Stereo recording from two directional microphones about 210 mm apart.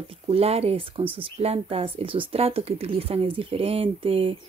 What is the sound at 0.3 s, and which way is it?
Speech, 30° right (ahead or behind).